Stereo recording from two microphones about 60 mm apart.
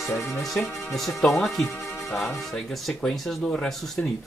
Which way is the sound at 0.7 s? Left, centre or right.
Left.